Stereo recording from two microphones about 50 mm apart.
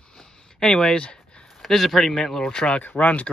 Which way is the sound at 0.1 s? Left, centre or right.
Centre.